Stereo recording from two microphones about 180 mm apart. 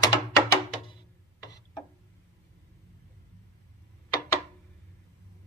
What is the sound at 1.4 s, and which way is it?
Ratchet, 20° left (ahead or behind).